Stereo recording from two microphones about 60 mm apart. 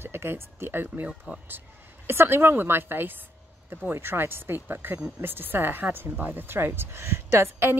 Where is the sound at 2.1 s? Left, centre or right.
Right.